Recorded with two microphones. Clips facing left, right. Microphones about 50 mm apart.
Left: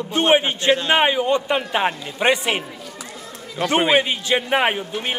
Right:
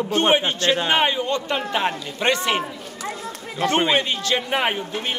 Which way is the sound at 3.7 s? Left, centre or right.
Centre.